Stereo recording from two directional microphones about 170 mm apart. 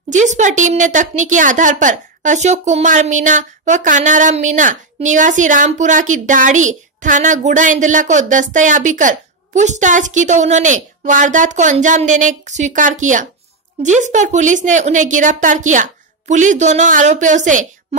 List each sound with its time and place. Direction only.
0.1 s a woman's voice: 45° right (ahead or behind)